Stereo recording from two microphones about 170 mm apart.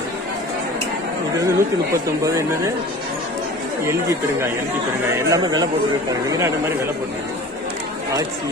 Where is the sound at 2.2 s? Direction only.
20° right (ahead or behind).